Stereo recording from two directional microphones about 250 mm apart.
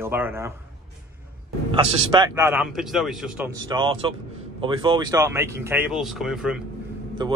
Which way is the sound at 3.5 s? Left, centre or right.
Centre.